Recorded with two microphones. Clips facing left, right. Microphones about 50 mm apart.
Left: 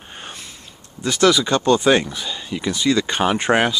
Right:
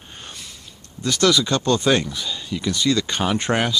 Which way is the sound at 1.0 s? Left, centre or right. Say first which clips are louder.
Left 2 dB; centre.